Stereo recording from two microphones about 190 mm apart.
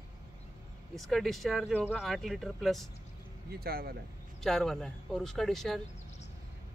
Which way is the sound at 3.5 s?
55° right (ahead or behind).